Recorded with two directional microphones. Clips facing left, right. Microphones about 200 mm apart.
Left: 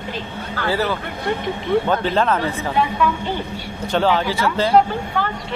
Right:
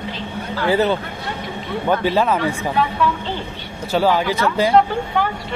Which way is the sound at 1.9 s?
10° right (ahead or behind).